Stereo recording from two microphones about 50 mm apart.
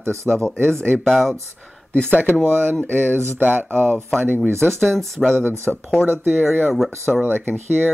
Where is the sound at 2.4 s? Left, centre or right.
Right.